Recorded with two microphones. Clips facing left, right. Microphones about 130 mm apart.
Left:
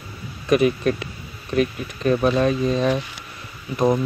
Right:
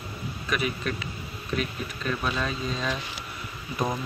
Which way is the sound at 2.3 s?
55° left (ahead or behind).